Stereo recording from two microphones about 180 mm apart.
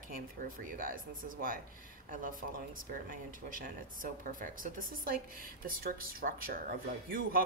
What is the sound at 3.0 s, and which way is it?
Speech, 50° right (ahead or behind).